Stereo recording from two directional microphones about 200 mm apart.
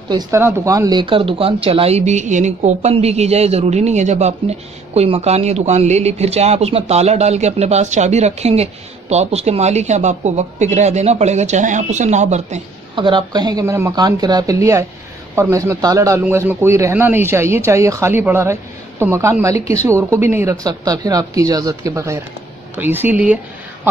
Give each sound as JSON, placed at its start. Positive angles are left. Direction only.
{"t": 0.1, "sound": "a man's voice", "side_deg": -15}